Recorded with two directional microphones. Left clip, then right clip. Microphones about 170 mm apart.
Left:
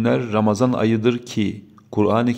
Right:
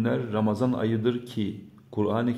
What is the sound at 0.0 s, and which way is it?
A man's voice, 25° left (ahead or behind).